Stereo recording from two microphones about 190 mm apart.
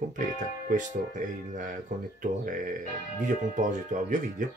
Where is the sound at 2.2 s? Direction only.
45° right (ahead or behind).